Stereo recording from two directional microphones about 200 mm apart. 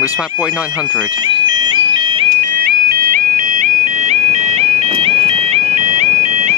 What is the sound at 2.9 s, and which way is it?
Music, 45° right (ahead or behind).